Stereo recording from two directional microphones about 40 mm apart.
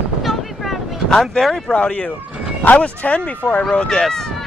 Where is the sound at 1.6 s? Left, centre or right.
Left.